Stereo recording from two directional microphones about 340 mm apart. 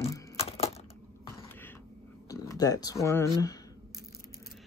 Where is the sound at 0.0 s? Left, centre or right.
Centre.